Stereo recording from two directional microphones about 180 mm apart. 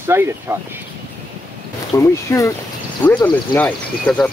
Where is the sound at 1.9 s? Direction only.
20° left (ahead or behind).